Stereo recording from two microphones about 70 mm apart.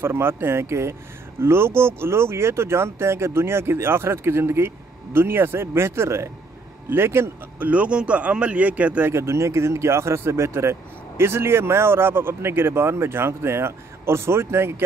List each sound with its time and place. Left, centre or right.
0.0 s speech: right
7.5 s speech: right
9.1 s speech: right